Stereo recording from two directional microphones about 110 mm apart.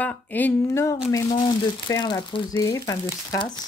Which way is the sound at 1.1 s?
35° left (ahead or behind).